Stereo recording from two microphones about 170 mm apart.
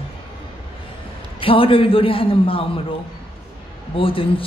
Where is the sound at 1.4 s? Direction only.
30° left (ahead or behind).